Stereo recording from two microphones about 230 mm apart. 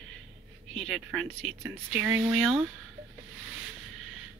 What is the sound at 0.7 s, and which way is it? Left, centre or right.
Speech, centre.